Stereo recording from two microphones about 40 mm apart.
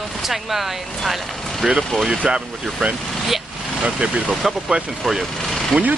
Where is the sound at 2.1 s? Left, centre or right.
Right.